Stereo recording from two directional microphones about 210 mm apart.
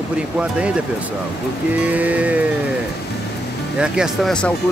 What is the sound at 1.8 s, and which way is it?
Music, 5° right (ahead or behind).